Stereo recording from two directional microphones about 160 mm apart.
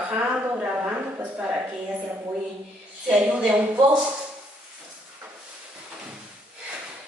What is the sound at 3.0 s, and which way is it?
Speech, 5° right (ahead or behind).